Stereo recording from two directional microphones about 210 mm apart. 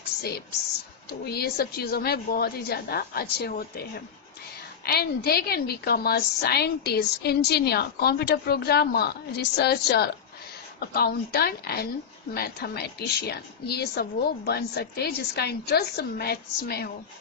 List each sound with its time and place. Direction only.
1.2 s a woman's voice: 50° left (ahead or behind)
4.8 s a woman's voice: 50° left (ahead or behind)